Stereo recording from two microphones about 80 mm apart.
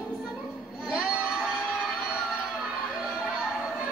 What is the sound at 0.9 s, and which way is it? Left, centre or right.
Crowd, centre.